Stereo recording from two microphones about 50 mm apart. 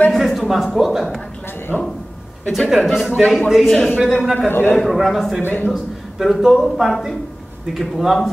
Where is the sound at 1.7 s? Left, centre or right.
Centre.